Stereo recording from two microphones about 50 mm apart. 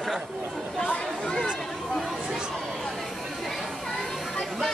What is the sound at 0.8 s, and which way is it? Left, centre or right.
Speech, left.